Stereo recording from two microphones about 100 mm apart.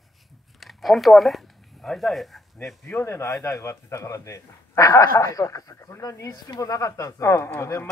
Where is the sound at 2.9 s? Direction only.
20° left (ahead or behind).